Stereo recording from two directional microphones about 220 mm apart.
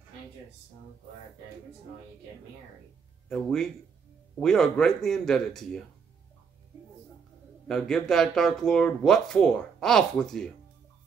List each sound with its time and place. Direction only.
3.3 s speech: 5° left (ahead or behind)
7.6 s speech: centre (ahead or behind)